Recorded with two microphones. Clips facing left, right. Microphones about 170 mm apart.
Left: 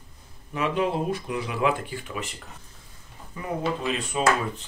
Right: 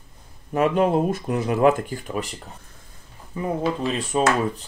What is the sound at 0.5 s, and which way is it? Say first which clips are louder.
Speech: right 6 dB; 45° right (ahead or behind).